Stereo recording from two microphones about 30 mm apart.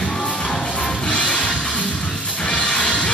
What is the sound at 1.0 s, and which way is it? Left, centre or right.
Music, left.